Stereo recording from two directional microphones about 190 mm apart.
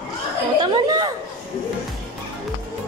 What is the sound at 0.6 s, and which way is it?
Chatter, 20° right (ahead or behind).